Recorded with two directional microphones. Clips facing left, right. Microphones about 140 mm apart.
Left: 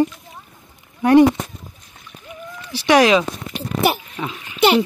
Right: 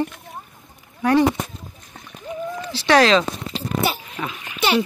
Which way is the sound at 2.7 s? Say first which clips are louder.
Left 2 dB; 15° left (ahead or behind).